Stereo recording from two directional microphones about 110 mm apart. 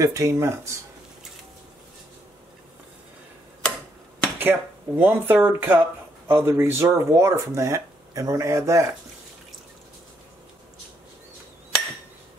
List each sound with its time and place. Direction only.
0.0 s speech: 30° right (ahead or behind)
4.4 s speech: 20° right (ahead or behind)